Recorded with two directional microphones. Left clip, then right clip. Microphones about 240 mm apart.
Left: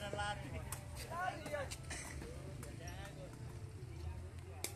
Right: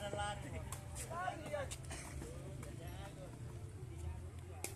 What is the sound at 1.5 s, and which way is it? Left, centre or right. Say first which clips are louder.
Vehicle: right 2 dB; left.